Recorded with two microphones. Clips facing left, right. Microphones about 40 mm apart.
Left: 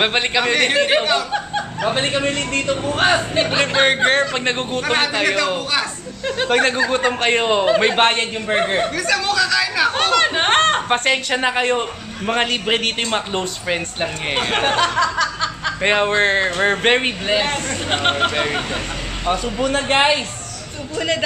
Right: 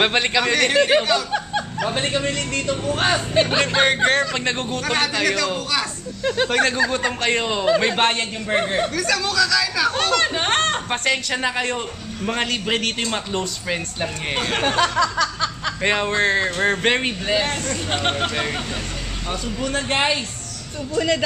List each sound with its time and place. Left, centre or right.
0.0 s a man's voice: centre
3.3 s a man's voice: centre; by 5.9 s left
6.2 s speech: centre
6.5 s a man's voice: left